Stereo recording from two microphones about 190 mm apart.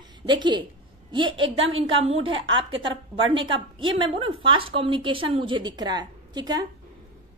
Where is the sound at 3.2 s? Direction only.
25° right (ahead or behind).